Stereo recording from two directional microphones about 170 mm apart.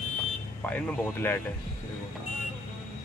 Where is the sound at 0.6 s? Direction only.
10° left (ahead or behind).